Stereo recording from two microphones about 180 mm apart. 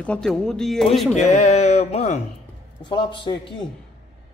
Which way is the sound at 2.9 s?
25° left (ahead or behind).